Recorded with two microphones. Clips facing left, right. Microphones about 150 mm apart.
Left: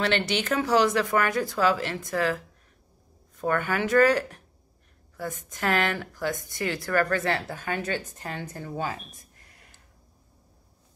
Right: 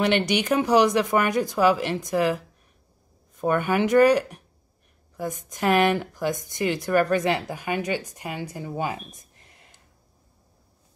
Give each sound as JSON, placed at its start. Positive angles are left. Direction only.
{"t": 0.0, "sound": "speech", "side_deg": -15}